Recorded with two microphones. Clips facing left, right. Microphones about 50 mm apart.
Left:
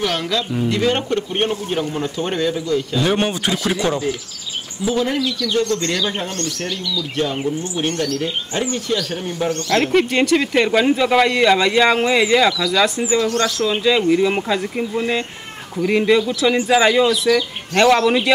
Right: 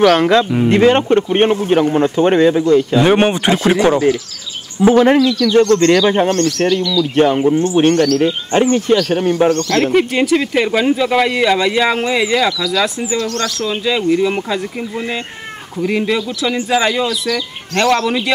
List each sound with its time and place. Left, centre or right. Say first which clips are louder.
0.1 s a man's voice: right 10 dB; right
4.8 s a man's voice: right 10 dB; right
8.9 s speech: right 9 dB; right
9.9 s speech: right 1 dB; centre